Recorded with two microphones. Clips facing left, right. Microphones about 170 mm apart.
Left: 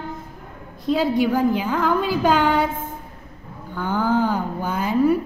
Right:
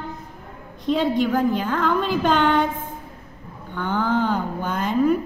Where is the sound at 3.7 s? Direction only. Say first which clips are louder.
Left 1 dB; 10° left (ahead or behind).